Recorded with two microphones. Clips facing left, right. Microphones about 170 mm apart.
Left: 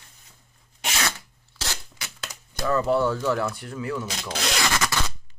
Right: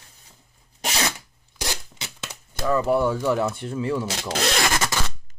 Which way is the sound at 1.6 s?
15° right (ahead or behind).